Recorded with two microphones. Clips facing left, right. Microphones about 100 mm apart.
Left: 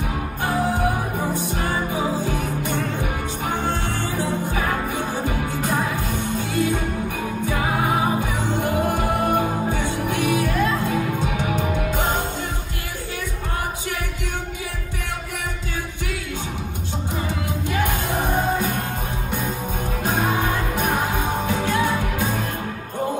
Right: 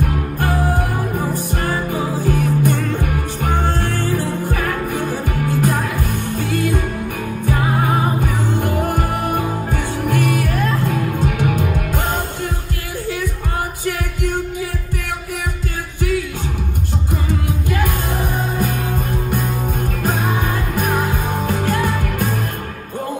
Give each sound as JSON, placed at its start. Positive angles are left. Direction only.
{"t": 0.0, "sound": "music", "side_deg": -55}
{"t": 8.2, "sound": "music", "side_deg": -50}
{"t": 17.6, "sound": "music", "side_deg": -50}
{"t": 20.4, "sound": "music", "side_deg": -45}